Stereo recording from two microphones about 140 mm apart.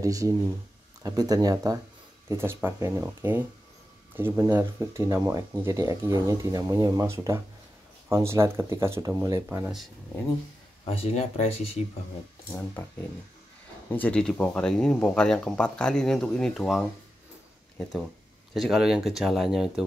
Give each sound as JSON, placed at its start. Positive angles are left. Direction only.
{"t": 0.0, "sound": "speech", "side_deg": -25}
{"t": 10.9, "sound": "speech", "side_deg": 45}
{"t": 13.9, "sound": "speech", "side_deg": 10}
{"t": 18.5, "sound": "speech", "side_deg": 0}